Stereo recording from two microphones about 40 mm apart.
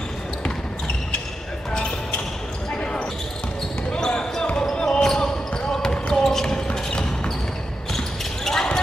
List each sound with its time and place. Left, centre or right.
1.7 s basketball bounce: left
3.9 s basketball bounce: left
5.8 s basketball bounce: left
8.5 s basketball bounce: centre